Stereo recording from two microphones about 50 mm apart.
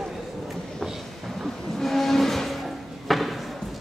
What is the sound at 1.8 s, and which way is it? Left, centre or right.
Music, centre.